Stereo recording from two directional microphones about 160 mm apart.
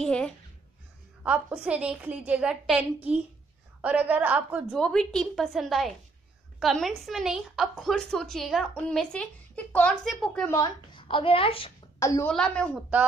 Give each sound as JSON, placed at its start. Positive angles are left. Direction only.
{"t": 0.0, "sound": "a sound", "side_deg": 5}
{"t": 1.2, "sound": "a woman's voice", "side_deg": -10}
{"t": 4.7, "sound": "a woman's voice", "side_deg": 5}
{"t": 10.5, "sound": "a woman's voice", "side_deg": 25}
{"t": 12.0, "sound": "a woman's voice", "side_deg": 20}
{"t": 12.3, "sound": "a woman's voice", "side_deg": 5}